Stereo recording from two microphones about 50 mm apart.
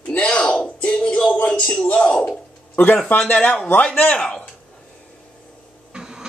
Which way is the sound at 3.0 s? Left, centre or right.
Left.